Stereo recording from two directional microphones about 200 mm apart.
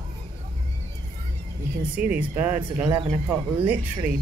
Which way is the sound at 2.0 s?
5° right (ahead or behind).